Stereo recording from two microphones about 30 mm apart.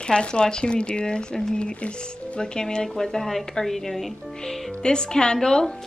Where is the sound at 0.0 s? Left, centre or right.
Left.